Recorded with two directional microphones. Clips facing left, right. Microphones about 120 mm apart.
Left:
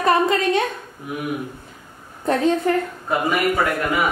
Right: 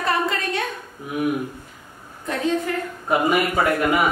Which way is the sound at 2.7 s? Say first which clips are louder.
Left 7 dB; 40° left (ahead or behind).